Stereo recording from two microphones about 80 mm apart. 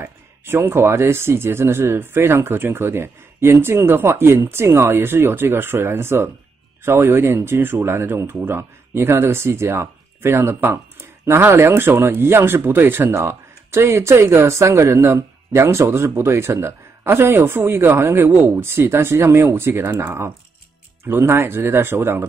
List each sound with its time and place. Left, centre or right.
0.5 s speech: right